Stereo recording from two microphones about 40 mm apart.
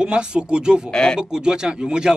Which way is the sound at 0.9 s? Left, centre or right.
Left.